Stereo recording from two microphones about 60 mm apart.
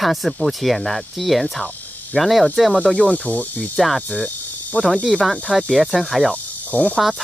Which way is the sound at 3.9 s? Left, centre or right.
Centre.